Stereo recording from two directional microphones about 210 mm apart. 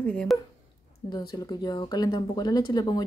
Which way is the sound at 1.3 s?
20° left (ahead or behind).